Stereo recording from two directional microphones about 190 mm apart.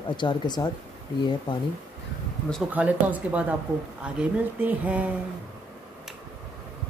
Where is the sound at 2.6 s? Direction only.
10° right (ahead or behind).